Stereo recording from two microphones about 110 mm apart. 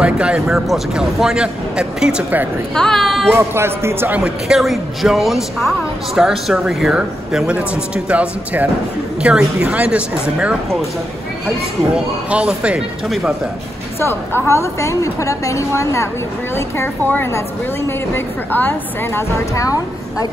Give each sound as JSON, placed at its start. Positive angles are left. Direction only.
{"t": 0.0, "sound": "a man's voice", "side_deg": -10}
{"t": 2.7, "sound": "speech", "side_deg": 5}
{"t": 3.3, "sound": "a man's voice", "side_deg": -20}
{"t": 13.9, "sound": "a woman's voice", "side_deg": 20}